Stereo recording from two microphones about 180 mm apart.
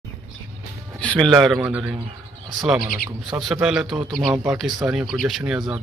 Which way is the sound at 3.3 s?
Centre (ahead or behind).